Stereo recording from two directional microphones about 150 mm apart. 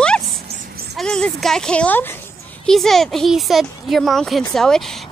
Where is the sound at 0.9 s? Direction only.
5° left (ahead or behind).